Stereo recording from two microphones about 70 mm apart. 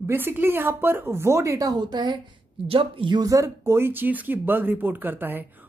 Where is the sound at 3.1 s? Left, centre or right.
Right.